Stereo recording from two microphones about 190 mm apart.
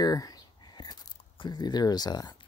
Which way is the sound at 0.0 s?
20° left (ahead or behind).